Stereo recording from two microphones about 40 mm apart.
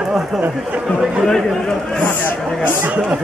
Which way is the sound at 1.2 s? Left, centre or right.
Centre.